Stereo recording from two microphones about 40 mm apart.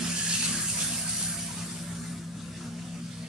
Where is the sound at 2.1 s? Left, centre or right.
Centre.